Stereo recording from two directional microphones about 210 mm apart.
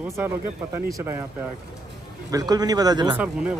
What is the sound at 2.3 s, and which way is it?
Speech, 15° right (ahead or behind).